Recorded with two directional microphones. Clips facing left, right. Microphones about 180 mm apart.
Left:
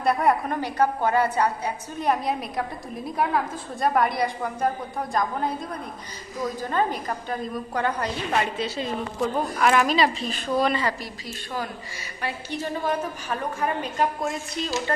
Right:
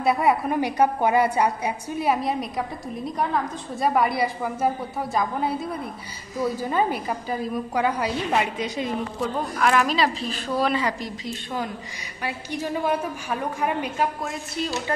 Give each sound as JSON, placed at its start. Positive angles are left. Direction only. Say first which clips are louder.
{"t": 0.0, "sound": "a woman's voice", "louder": "right 1 dB", "side_deg": 0}
{"t": 0.6, "sound": "a woman's voice", "louder": "right 3 dB", "side_deg": -15}
{"t": 3.8, "sound": "a woman's voice", "louder": "right 1 dB", "side_deg": 0}
{"t": 9.2, "sound": "a woman's voice", "louder": "left 2 dB", "side_deg": 0}
{"t": 11.0, "sound": "a woman's voice", "louder": "right 4 dB", "side_deg": -20}